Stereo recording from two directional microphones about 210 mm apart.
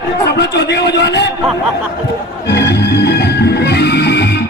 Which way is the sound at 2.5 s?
50° left (ahead or behind).